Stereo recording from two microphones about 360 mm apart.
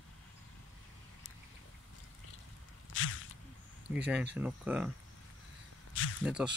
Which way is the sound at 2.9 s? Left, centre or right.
Left.